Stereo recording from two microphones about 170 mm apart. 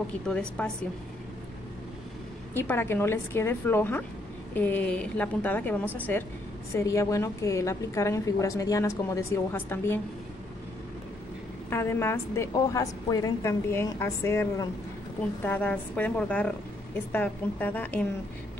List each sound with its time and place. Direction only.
0.3 s a woman's voice: 5° left (ahead or behind)
2.5 s a woman's voice: 10° left (ahead or behind)
11.7 s a woman's voice: 15° left (ahead or behind)